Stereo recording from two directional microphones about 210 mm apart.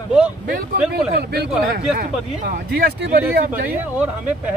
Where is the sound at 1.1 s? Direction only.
50° right (ahead or behind).